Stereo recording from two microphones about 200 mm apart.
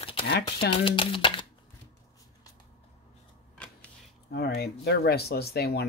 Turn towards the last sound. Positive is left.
turn(degrees=50)  # may be behind; listen again after turning